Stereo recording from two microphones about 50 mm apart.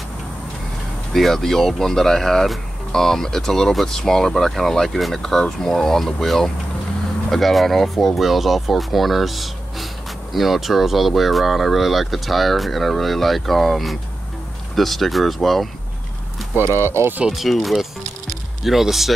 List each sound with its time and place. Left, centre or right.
1.1 s speech: centre
16.6 s speech: right
17.3 s speech: centre